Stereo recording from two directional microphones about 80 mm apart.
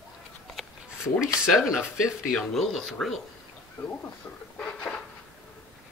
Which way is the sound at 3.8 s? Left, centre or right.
Left.